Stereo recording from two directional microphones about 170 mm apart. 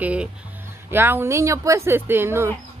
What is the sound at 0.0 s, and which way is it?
A woman's voice, 5° right (ahead or behind).